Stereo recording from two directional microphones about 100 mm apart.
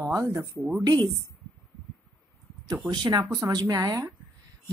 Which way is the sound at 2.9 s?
45° right (ahead or behind).